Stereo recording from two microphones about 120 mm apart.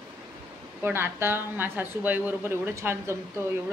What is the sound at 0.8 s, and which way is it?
Speech, 20° right (ahead or behind).